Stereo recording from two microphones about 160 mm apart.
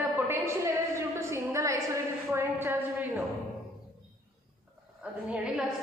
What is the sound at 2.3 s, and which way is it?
Speech, 15° right (ahead or behind).